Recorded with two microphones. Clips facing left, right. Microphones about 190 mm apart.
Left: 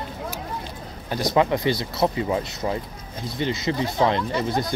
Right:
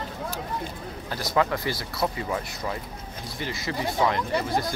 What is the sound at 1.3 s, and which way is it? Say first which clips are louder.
Speech: left 4 dB; 20° left (ahead or behind).